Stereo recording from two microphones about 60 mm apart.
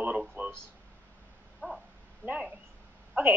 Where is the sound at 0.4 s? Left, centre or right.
Right.